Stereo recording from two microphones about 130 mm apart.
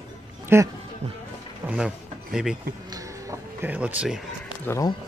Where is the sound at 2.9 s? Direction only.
25° right (ahead or behind).